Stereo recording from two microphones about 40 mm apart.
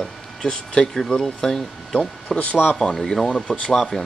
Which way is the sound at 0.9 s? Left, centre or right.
Centre.